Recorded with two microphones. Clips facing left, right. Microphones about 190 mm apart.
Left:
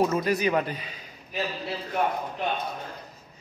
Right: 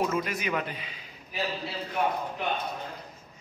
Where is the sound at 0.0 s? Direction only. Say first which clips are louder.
Left 5 dB; 35° left (ahead or behind).